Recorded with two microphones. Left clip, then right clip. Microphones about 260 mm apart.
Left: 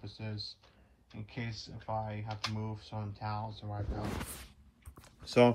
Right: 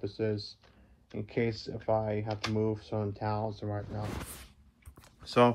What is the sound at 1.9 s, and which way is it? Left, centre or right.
Speech, right.